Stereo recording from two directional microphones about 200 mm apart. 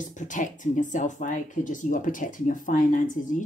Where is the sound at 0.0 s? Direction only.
40° left (ahead or behind).